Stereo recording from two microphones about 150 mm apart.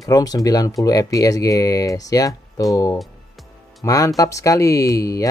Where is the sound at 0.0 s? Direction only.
25° left (ahead or behind).